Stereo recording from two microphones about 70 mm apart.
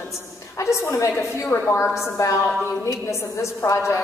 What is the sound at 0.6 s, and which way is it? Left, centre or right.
A woman's voice, left.